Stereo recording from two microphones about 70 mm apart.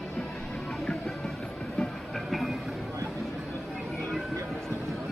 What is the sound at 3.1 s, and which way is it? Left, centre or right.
Chatter, centre.